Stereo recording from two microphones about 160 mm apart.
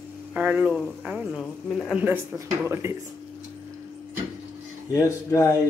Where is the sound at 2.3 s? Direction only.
20° right (ahead or behind).